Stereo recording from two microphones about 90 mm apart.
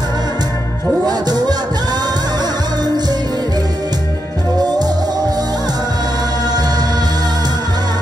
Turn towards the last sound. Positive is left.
turn(degrees=-50)  # may be behind; listen again after turning